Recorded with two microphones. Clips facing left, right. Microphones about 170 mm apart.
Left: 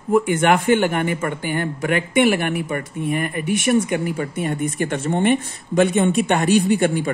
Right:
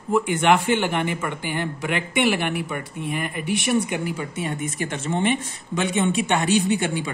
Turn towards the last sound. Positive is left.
turn(degrees=55)  # may be behind; listen again after turning